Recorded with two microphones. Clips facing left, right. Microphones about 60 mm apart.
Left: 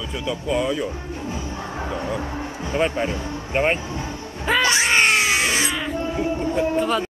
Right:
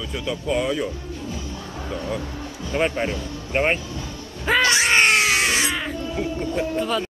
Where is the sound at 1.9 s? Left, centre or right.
Left.